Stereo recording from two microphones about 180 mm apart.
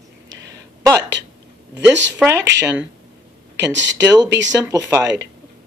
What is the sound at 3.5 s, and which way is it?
Speech, 80° right.